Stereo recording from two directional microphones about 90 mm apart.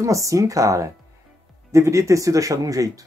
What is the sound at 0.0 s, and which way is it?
Speech, 35° right (ahead or behind).